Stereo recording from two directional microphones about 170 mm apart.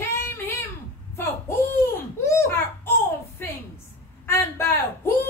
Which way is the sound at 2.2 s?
15° left (ahead or behind).